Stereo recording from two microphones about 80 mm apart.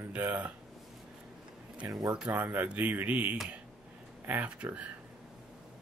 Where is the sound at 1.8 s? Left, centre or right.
Right.